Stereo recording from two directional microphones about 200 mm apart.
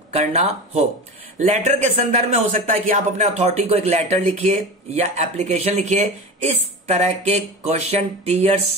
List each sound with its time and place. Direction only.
0.1 s speech: 35° right (ahead or behind)